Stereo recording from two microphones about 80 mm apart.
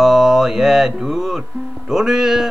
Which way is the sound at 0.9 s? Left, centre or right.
Centre.